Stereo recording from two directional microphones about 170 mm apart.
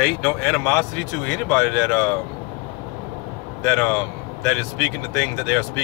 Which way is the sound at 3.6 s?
5° left (ahead or behind).